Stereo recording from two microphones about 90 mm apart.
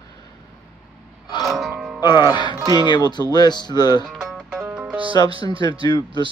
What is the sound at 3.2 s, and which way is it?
Speech, 50° left (ahead or behind).